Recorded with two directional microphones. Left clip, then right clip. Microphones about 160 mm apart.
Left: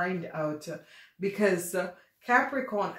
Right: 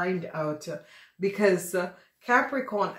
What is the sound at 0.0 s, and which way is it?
A woman's voice, 40° right (ahead or behind).